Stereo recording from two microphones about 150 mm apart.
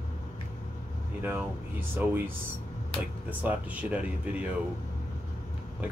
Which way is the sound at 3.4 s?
10° right (ahead or behind).